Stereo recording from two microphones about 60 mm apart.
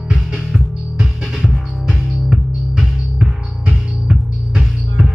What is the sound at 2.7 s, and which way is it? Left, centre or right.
Music, centre.